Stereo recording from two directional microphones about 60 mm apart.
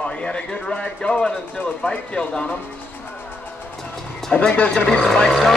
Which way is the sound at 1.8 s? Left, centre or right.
Centre.